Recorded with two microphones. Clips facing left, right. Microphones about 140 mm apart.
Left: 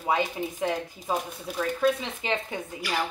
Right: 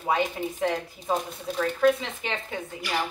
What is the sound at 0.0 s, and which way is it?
Speech, 15° left (ahead or behind).